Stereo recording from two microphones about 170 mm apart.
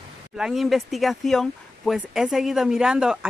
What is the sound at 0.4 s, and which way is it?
Speech, centre (ahead or behind).